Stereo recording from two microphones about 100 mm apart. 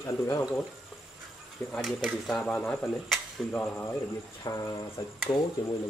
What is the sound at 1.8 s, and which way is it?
Speech, centre (ahead or behind).